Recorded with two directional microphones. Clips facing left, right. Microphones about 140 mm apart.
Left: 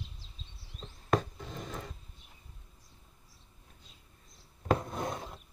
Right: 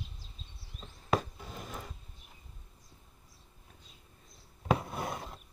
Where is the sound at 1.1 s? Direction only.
5° right (ahead or behind).